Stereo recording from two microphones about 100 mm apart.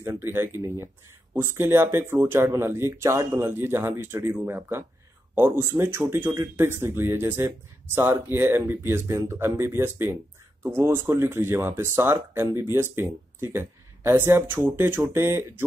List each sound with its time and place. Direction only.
0.0 s speech: 25° right (ahead or behind)